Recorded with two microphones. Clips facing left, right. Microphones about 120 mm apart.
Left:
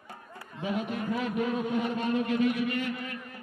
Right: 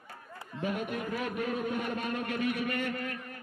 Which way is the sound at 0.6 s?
50° right (ahead or behind).